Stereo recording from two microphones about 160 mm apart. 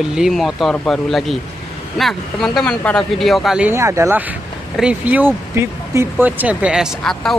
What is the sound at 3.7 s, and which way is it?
Speech, 20° right (ahead or behind).